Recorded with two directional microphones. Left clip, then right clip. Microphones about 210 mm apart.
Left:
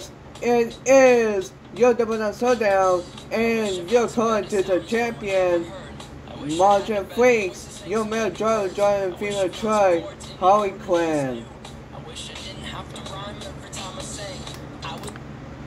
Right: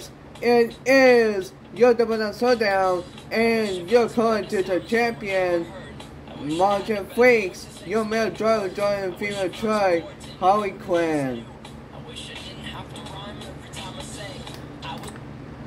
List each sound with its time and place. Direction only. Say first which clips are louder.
0.4 s speech: right 2 dB; 15° right (ahead or behind)
6.9 s speech: right 1 dB; 10° right (ahead or behind)
13.7 s vehicle: left 2 dB; 45° left (ahead or behind)